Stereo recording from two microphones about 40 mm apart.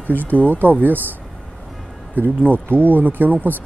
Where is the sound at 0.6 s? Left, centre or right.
Right.